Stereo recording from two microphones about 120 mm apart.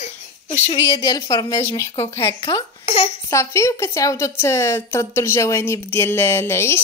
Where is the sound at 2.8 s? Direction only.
55° left (ahead or behind).